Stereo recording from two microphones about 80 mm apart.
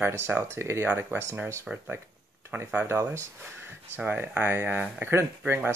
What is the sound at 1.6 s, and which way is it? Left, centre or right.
Speech, centre.